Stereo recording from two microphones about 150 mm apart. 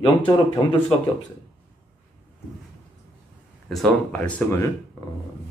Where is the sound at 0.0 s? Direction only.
35° left (ahead or behind).